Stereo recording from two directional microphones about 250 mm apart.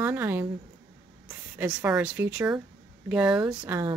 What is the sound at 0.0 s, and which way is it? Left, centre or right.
Speech, centre.